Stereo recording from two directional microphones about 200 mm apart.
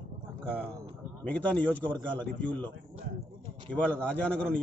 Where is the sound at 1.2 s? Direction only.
5° left (ahead or behind).